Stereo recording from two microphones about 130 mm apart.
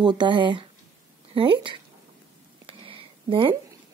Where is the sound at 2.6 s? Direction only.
40° right (ahead or behind).